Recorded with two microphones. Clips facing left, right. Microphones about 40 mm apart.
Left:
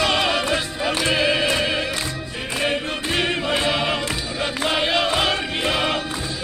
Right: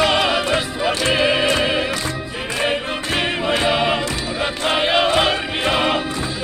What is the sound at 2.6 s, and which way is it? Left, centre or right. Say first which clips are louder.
Choir: right 2 dB; centre.